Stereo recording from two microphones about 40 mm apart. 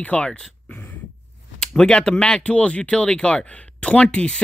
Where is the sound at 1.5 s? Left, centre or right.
Centre.